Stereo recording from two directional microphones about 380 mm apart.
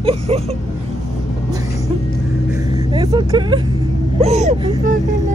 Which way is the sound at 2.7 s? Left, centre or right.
Centre.